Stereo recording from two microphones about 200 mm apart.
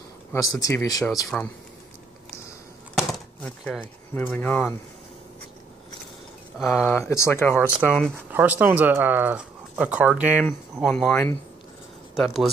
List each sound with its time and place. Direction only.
0.3 s speech: 15° left (ahead or behind)
2.9 s speech: centre (ahead or behind)
6.6 s speech: 10° left (ahead or behind)
7.8 s speech: 5° right (ahead or behind)